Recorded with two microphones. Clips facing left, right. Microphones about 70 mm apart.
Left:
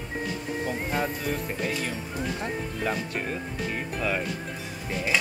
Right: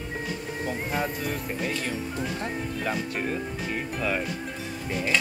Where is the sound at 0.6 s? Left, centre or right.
Centre.